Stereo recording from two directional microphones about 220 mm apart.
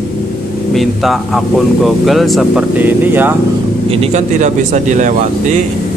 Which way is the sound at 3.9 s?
30° right (ahead or behind).